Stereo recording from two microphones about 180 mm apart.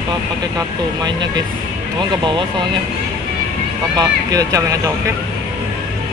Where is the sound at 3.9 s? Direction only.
20° right (ahead or behind).